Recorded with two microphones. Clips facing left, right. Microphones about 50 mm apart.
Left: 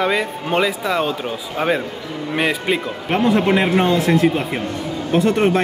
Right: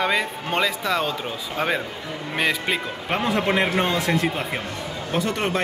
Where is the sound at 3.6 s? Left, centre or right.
Centre.